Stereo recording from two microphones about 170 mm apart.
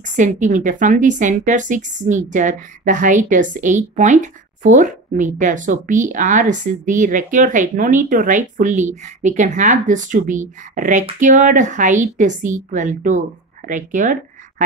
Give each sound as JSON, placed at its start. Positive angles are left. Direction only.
{"t": 0.0, "sound": "a woman's voice", "side_deg": -45}